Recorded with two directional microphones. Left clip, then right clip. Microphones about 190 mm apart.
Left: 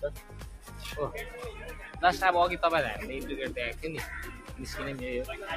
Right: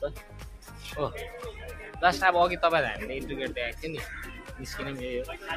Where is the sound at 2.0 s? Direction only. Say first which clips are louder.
Right 2 dB; 30° right (ahead or behind); by 4.0 s 15° right (ahead or behind).